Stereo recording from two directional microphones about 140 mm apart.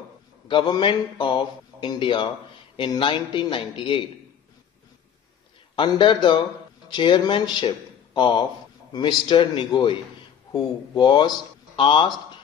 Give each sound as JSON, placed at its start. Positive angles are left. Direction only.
{"t": 0.5, "sound": "a man's voice", "side_deg": 35}
{"t": 5.8, "sound": "a man's voice", "side_deg": 35}